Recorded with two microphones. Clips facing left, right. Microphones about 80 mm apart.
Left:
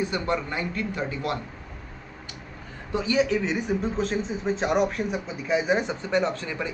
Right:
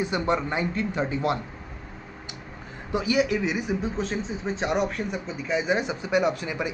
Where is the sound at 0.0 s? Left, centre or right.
Centre.